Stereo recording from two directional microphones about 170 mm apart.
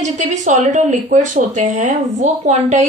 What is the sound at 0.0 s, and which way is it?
Speech, 45° right (ahead or behind).